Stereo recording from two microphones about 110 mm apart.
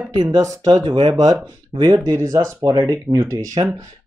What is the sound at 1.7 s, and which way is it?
Speech, 45° right (ahead or behind).